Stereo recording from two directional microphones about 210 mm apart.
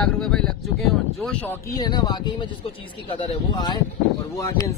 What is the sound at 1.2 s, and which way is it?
Speech, 5° left (ahead or behind).